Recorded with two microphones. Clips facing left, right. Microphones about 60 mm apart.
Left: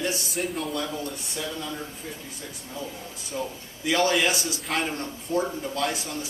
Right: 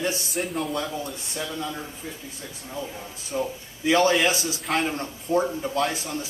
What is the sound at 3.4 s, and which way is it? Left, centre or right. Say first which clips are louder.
Speech: right 4 dB; right.